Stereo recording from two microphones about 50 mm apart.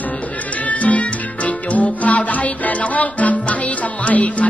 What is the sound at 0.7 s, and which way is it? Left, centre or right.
Music, left.